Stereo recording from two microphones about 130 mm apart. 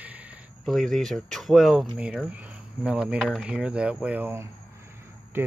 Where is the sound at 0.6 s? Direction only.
Centre (ahead or behind).